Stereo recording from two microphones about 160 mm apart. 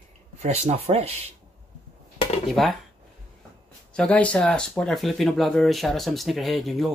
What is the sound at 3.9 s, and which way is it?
Speech, 5° left (ahead or behind).